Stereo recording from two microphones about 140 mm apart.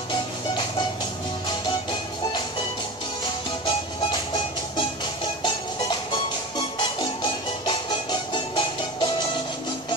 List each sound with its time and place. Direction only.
5.4 s music: 35° left (ahead or behind)